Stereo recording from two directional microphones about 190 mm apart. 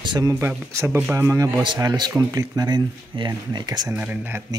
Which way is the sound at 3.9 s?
10° right (ahead or behind).